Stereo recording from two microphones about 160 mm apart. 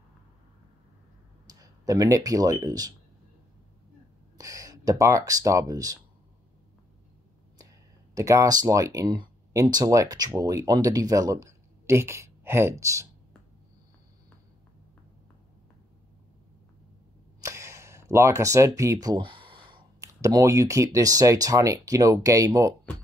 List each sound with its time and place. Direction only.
1.5 s speech: 25° right (ahead or behind)
4.4 s speech: 20° right (ahead or behind)
8.1 s speech: 20° right (ahead or behind)
17.4 s a sound: 20° right (ahead or behind)
19.0 s a sound: 30° right (ahead or behind)
20.0 s speech: 20° right (ahead or behind)